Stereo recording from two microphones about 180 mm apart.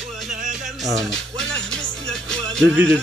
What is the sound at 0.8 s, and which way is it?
Music, 5° left (ahead or behind).